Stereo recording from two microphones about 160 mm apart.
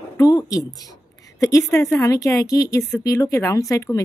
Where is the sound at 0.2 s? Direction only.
20° left (ahead or behind).